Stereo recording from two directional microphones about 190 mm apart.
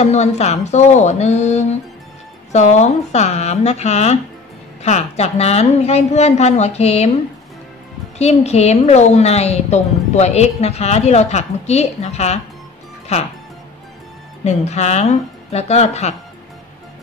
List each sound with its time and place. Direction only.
0.0 s a woman's voice: 35° left (ahead or behind)
8.2 s a woman's voice: 35° left (ahead or behind)
14.4 s a woman's voice: 35° left (ahead or behind)